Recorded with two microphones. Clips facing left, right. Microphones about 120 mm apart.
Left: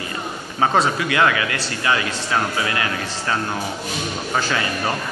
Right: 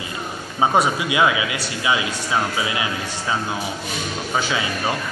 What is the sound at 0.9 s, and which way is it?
A man's voice, 15° right (ahead or behind).